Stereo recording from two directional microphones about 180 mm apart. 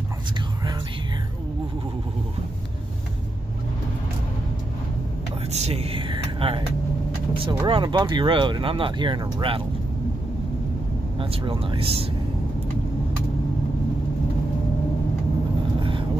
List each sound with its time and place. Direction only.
5.5 s a sound: 35° right (ahead or behind)
7.3 s speech: 30° right (ahead or behind)
11.1 s speech: 30° right (ahead or behind)